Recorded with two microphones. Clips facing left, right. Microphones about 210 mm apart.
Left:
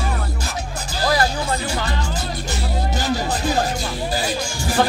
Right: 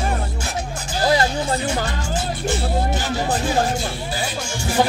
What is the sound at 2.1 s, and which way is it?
Music, 40° left (ahead or behind).